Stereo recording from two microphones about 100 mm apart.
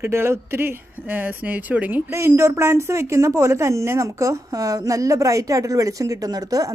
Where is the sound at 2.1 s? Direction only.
25° right (ahead or behind).